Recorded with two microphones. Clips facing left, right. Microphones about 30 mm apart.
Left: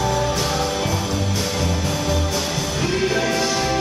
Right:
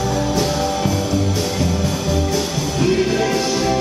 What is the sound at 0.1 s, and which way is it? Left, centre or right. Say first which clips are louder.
Music: right 2 dB; centre.